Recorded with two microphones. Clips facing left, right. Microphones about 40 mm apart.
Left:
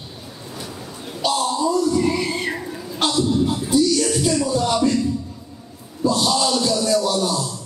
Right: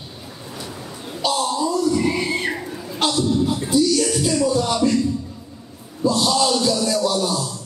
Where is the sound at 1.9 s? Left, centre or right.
Centre.